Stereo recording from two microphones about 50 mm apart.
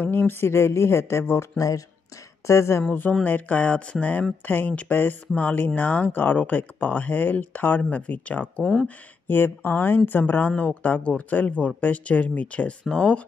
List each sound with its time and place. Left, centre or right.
0.0 s speech: left
0.3 s speech: left
2.4 s speech: left
2.9 s speech: left
9.3 s speech: left
10.5 s speech: left